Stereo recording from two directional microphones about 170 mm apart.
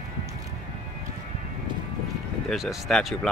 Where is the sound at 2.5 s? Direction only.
Centre (ahead or behind).